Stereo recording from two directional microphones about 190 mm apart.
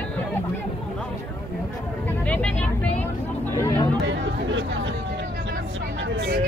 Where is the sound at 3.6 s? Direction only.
20° left (ahead or behind).